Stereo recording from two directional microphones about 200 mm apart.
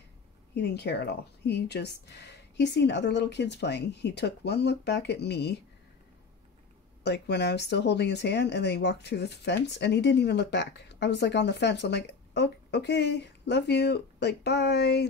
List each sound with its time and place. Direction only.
0.6 s speech: 55° left (ahead or behind)
7.0 s speech: 55° left (ahead or behind)